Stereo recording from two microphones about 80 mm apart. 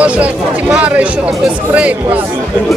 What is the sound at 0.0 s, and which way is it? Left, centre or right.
Speech, centre.